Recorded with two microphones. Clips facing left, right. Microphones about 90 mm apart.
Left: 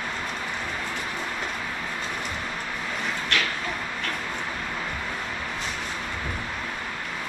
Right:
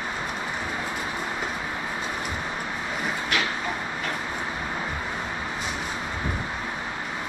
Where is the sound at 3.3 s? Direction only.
5° right (ahead or behind).